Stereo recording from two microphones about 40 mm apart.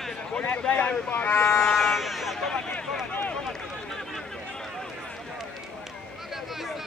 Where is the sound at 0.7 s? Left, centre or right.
Left.